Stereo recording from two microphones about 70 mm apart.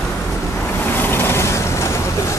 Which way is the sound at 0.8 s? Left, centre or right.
Left.